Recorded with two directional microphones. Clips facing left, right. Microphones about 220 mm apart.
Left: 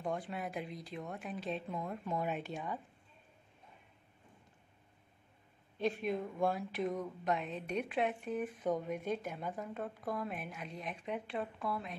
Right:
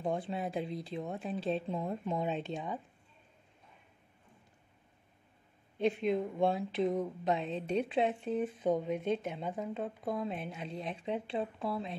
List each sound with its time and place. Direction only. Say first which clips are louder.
0.0 s speech: right 4 dB; 25° right (ahead or behind)
5.8 s speech: right 5 dB; 20° right (ahead or behind)